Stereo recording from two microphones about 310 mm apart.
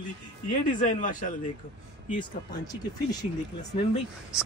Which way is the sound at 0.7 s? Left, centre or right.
Left.